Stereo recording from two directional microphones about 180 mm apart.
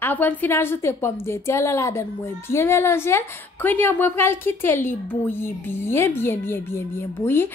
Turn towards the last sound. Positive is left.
turn(degrees=15)  # may be behind; listen again after turning